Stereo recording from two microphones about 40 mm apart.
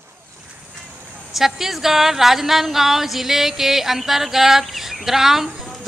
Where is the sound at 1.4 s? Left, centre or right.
Centre.